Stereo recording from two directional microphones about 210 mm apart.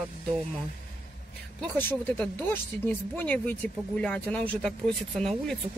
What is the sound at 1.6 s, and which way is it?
Speech, 10° left (ahead or behind).